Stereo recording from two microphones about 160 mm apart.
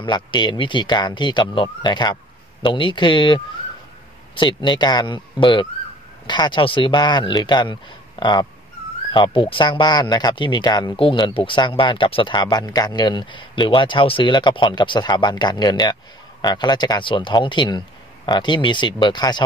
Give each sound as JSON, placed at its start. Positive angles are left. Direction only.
{"t": 0.0, "sound": "speech", "side_deg": 30}